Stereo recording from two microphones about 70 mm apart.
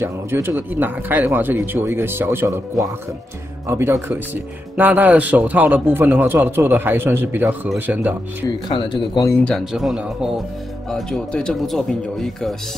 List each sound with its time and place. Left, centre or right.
0.0 s speech: right
3.6 s speech: right
4.1 s speech: right
8.6 s speech: left
9.7 s speech: centre